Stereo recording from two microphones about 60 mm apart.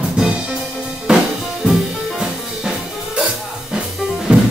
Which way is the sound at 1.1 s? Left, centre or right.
Centre.